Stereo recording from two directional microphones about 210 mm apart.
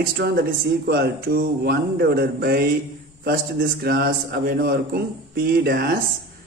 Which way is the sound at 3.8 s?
50° right (ahead or behind).